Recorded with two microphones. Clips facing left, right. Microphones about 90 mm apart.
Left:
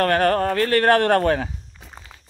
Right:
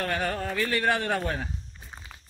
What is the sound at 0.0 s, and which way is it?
Speech, 65° left (ahead or behind).